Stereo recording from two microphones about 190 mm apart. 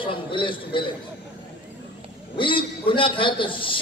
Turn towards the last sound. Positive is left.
turn(degrees=25)  # may be behind; listen again after turning